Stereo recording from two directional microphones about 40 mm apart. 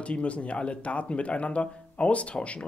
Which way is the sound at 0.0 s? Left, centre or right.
Left.